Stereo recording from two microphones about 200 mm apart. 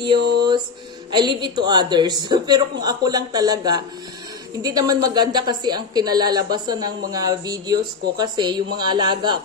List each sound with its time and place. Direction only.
1.1 s speech: 20° right (ahead or behind)